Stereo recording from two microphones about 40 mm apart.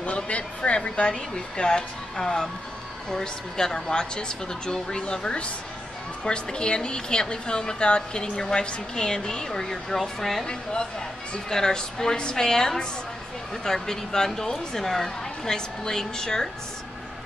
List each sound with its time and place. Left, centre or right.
0.0 s a woman's voice: left; by 10.4 s centre
10.4 s a woman's voice: left